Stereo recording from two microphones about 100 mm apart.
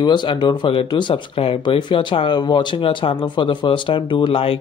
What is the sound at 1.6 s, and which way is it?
Speech, 50° left (ahead or behind).